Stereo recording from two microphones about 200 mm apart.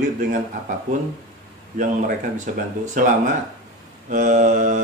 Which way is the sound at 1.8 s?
40° right (ahead or behind).